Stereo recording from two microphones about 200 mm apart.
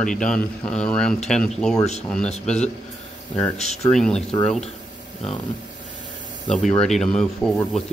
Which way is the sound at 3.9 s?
5° left (ahead or behind).